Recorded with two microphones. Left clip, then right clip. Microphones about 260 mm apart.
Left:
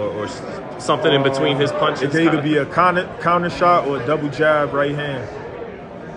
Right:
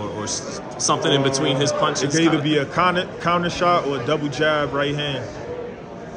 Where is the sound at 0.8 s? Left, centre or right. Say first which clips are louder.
Left 3 dB; centre.